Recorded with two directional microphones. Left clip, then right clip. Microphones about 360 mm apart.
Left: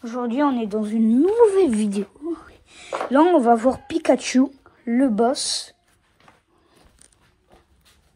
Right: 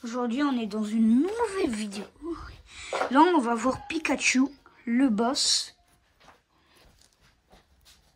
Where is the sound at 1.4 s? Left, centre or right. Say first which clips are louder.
Left 12 dB; centre.